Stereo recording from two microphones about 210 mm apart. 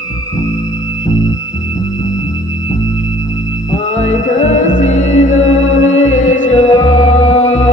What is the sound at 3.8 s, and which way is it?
Music, 30° left (ahead or behind).